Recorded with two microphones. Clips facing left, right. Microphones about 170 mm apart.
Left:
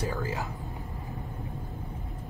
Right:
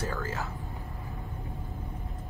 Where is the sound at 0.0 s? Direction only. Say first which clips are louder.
Left 2 dB; 15° left (ahead or behind).